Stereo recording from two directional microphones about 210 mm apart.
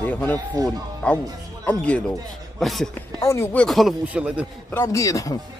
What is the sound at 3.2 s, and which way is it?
Speech, 15° left (ahead or behind).